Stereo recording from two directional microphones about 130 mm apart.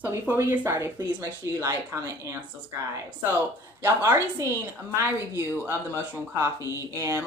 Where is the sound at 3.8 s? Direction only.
20° right (ahead or behind).